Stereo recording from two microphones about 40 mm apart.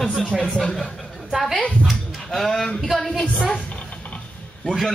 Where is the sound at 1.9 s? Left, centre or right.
Centre.